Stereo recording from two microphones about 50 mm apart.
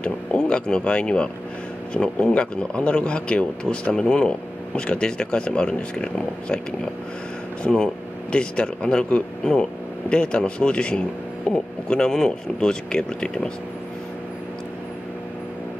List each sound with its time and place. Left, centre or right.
0.0 s speech: left
7.7 s speech: centre